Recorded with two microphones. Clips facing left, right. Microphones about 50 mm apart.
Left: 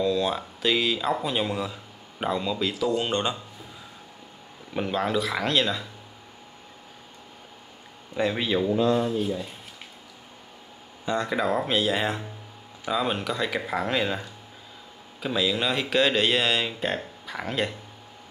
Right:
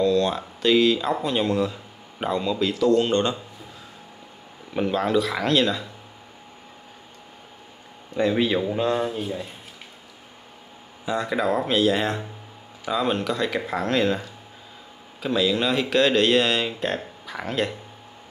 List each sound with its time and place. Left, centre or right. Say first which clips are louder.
0.0 s speech: right 4 dB; centre
4.7 s speech: right 4 dB; centre
8.2 s speech: right 3 dB; centre
8.7 s speech: left 1 dB; right
11.1 s speech: right 2 dB; centre
15.2 s speech: right 3 dB; centre